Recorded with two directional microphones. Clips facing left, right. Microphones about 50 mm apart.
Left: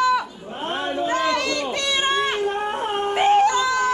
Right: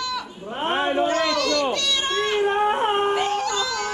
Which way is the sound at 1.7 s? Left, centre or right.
Left.